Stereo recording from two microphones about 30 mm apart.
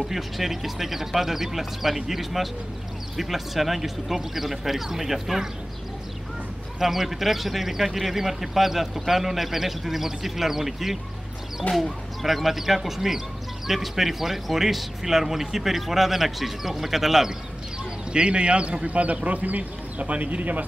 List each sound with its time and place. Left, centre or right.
0.1 s speech: centre
6.8 s speech: centre
11.7 s speech: left
12.2 s speech: centre
18.1 s speech: right